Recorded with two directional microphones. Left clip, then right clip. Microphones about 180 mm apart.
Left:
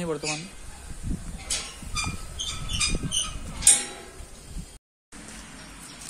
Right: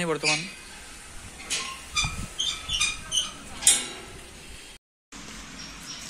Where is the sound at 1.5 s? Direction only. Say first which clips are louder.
Right 2 dB; 60° left (ahead or behind).